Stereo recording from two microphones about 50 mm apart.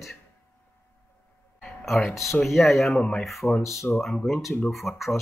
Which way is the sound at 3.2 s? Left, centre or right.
Centre.